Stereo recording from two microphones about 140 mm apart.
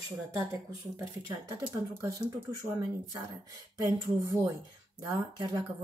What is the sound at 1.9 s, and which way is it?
Speech, 25° right (ahead or behind).